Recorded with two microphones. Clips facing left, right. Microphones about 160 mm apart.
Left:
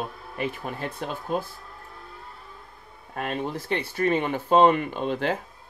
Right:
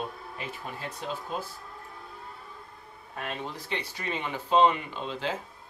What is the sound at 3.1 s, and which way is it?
Speech, 50° left (ahead or behind).